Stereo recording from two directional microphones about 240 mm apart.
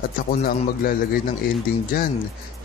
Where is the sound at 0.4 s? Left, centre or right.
Left.